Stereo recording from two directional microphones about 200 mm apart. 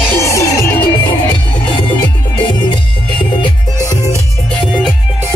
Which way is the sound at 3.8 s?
20° left (ahead or behind).